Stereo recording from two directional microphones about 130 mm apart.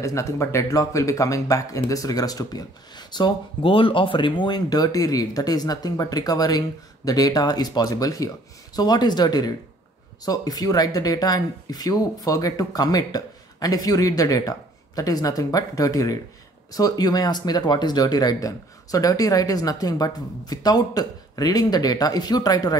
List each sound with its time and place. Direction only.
0.0 s speech: 25° left (ahead or behind)